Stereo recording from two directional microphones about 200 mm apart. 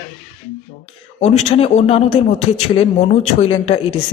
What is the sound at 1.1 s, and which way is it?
A man's voice, 35° left (ahead or behind).